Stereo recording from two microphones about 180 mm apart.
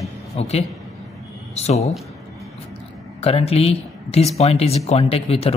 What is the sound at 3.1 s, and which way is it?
Speech, 35° left (ahead or behind).